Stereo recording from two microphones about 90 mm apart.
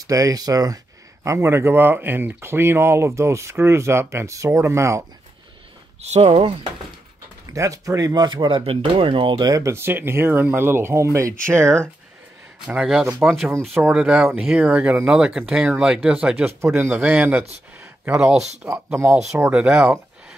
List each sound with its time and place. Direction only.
0.0 s speech: 40° right (ahead or behind)
1.2 s speech: 35° right (ahead or behind)
6.4 s speech: 65° right (ahead or behind)
7.4 s speech: 35° right (ahead or behind); by 9.3 s 75° right (ahead or behind)
9.3 s speech: 45° right (ahead or behind)
9.7 s speech: 25° right (ahead or behind)
13.2 s speech: centre (ahead or behind)
16.4 s speech: 25° right (ahead or behind)
18.2 s speech: 10° right (ahead or behind)
18.9 s speech: 30° right (ahead or behind)
19.5 s speech: 10° right (ahead or behind)